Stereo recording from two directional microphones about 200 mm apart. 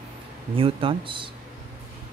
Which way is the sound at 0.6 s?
25° right (ahead or behind).